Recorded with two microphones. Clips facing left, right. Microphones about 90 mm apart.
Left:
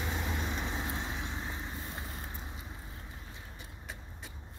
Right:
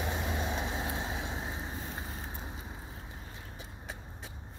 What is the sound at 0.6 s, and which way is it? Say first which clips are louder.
Vehicle: right 2 dB; 5° right (ahead or behind).